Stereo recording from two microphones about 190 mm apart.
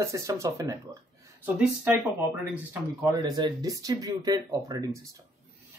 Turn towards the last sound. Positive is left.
turn(degrees=-20)  # may be behind; listen again after turning